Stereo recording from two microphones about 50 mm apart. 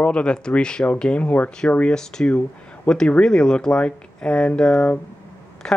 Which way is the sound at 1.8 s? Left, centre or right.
Centre.